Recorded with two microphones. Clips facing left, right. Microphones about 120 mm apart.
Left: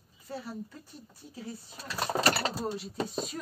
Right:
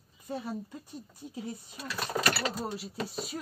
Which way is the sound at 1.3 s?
15° right (ahead or behind).